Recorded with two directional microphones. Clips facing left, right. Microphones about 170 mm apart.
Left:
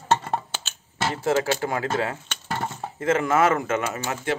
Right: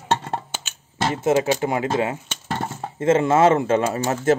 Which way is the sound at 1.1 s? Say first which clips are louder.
Right 4 dB; 20° right (ahead or behind).